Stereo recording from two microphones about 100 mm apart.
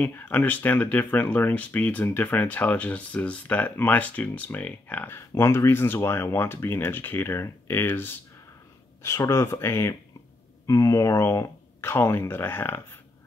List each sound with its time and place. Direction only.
0.0 s speech: 15° left (ahead or behind)